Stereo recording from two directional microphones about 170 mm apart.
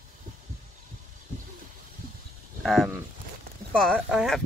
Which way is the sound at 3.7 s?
Centre (ahead or behind).